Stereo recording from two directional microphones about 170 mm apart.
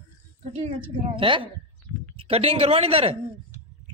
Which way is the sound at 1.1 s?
30° right (ahead or behind).